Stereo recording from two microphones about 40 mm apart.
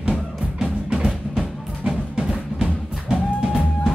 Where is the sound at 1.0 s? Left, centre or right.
Centre.